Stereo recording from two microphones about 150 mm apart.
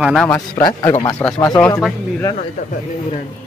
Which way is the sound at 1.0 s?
10° left (ahead or behind).